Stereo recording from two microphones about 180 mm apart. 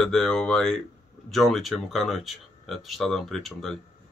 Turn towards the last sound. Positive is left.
turn(degrees=0)  # may be behind; listen again after turning